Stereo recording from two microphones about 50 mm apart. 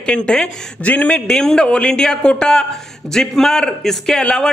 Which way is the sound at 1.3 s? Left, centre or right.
Centre.